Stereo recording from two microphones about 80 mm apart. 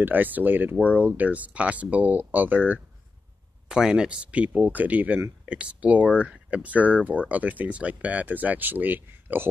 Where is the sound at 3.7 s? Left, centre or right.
Centre.